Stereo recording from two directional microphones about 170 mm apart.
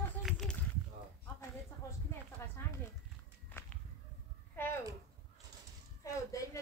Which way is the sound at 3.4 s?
10° left (ahead or behind).